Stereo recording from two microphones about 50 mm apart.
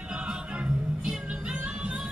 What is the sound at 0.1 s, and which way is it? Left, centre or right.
Music, right.